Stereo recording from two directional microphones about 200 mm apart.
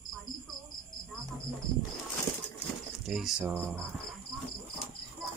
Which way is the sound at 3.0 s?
Centre (ahead or behind).